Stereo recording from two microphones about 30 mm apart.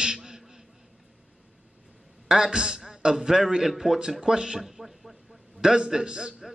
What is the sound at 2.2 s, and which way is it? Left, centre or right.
A man's voice, centre.